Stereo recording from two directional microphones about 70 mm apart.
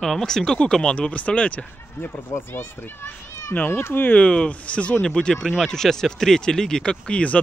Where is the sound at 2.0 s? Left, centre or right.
Left.